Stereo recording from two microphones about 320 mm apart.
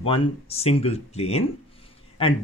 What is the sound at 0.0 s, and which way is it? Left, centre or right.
Speech, centre.